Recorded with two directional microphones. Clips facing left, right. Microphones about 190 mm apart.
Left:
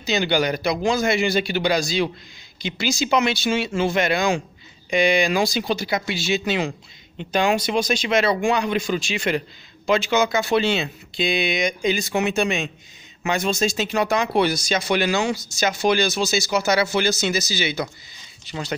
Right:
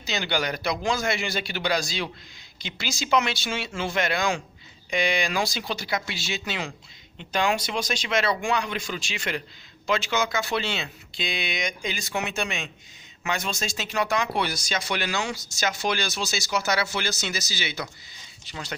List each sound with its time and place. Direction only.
0.0 s a man's voice: 15° left (ahead or behind)